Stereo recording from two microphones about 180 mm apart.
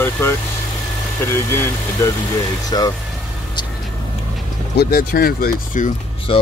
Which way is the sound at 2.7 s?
20° left (ahead or behind).